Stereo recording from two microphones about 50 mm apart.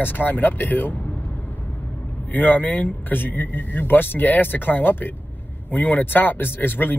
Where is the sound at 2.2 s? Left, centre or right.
Left.